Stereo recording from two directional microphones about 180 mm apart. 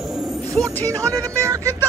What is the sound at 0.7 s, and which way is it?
Speech, 10° left (ahead or behind).